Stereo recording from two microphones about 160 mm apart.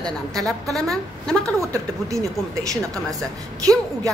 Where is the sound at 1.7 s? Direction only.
20° right (ahead or behind).